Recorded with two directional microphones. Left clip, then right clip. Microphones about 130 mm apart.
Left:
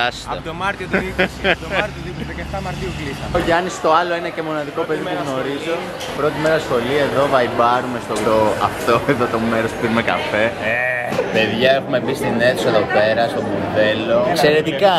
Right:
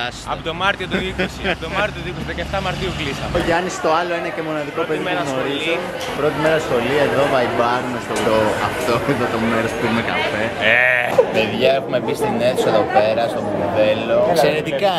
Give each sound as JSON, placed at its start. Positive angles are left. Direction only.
{"t": 0.9, "sound": "a man's voice", "side_deg": 15}
{"t": 3.3, "sound": "a man's voice", "side_deg": 10}
{"t": 6.2, "sound": "a man's voice", "side_deg": 10}
{"t": 10.6, "sound": "speech", "side_deg": -10}